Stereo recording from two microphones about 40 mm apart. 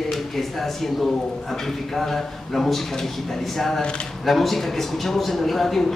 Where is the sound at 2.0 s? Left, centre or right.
Centre.